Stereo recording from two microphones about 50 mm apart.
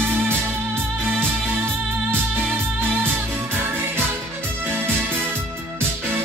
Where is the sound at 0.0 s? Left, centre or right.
Right.